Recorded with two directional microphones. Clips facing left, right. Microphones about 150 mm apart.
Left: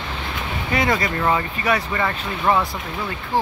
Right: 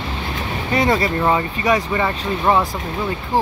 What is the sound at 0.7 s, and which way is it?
Speech, 30° right (ahead or behind).